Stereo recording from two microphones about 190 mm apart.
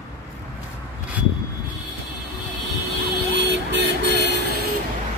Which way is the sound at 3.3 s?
65° right (ahead or behind).